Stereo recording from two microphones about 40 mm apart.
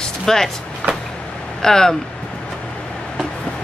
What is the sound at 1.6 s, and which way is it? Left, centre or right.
Speech, centre.